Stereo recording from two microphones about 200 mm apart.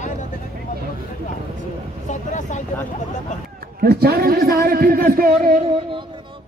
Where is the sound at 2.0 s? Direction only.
35° left (ahead or behind).